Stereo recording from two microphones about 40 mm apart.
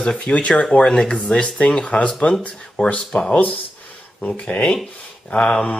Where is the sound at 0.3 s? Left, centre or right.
Left.